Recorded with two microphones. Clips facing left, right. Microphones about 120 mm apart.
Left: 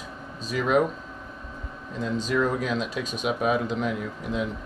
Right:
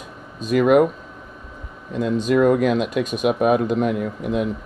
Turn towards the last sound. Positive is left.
turn(degrees=-60)  # may be behind; listen again after turning